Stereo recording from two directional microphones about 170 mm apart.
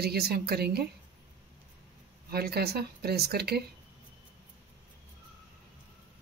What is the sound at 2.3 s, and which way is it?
Speech, 65° right (ahead or behind).